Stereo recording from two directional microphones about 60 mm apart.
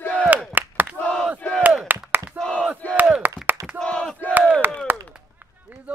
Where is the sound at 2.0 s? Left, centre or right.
Right.